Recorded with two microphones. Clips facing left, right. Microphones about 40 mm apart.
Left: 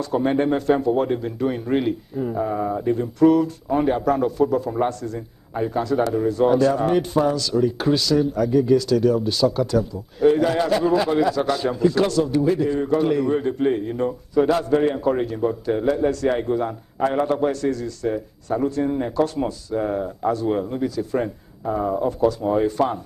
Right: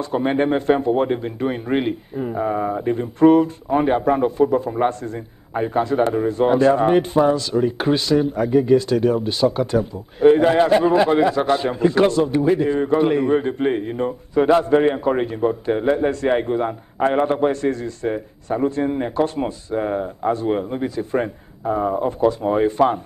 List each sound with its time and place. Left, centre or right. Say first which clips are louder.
0.0 s speech: right 1 dB; right